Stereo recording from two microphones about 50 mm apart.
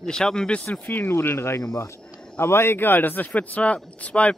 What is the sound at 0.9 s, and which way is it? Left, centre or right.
Speech, left.